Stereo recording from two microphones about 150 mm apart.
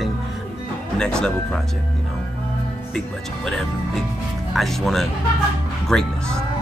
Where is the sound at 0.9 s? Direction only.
5° left (ahead or behind).